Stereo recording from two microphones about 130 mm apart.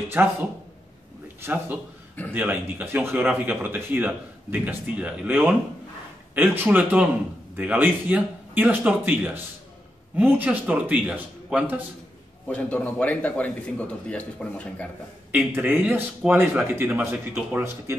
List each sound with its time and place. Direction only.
0.1 s speech: 15° right (ahead or behind)
12.4 s a man's voice: 10° left (ahead or behind)
15.3 s speech: 15° right (ahead or behind)